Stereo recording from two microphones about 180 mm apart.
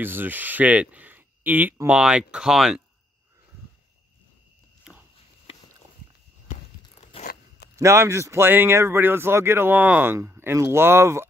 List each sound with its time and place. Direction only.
0.0 s speech: 10° right (ahead or behind)
4.9 s biting: 5° right (ahead or behind)
7.0 s crunch: 40° left (ahead or behind)
7.2 s zipper: 65° left (ahead or behind)
7.7 s speech: 15° right (ahead or behind)